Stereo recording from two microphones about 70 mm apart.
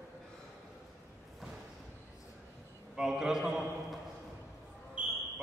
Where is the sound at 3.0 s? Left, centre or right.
Centre.